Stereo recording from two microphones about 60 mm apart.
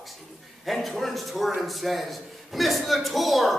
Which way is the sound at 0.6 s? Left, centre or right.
Centre.